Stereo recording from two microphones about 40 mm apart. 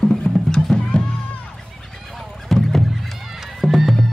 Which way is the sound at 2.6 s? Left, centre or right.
Centre.